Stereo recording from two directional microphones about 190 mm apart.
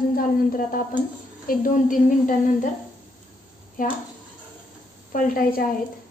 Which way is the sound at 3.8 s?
45° left (ahead or behind).